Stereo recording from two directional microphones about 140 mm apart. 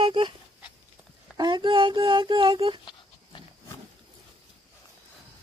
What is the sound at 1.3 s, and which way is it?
Speech, 30° right (ahead or behind).